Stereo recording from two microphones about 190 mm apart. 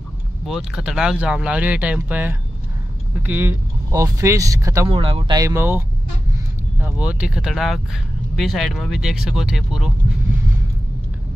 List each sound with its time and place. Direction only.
0.5 s speech: 5° right (ahead or behind)
4.8 s speech: 25° right (ahead or behind); by 9.9 s centre (ahead or behind)